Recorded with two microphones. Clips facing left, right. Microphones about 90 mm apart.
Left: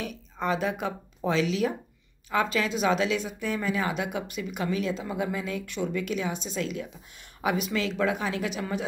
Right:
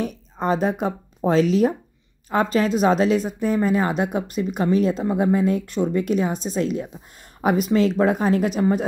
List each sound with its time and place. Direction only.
0.0 s speech: 40° right (ahead or behind)